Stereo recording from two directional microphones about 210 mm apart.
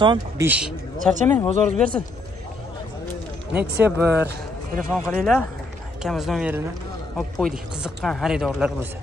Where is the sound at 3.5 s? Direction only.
10° right (ahead or behind).